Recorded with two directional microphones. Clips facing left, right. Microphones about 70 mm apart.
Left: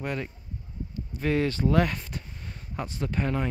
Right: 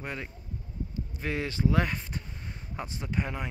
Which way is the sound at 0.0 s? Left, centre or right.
Right.